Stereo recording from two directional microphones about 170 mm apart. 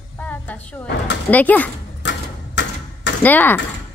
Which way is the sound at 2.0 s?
90° left.